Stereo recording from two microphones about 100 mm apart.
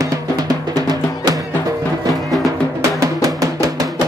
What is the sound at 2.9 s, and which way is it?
Music, 35° right (ahead or behind).